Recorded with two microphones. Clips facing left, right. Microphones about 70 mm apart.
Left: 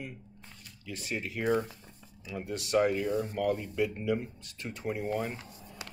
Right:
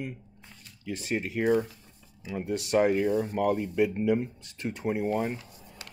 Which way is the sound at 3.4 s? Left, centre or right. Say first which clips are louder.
Right 5 dB; right.